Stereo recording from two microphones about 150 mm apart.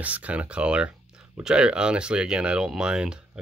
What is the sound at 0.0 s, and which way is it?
Speech, 10° right (ahead or behind).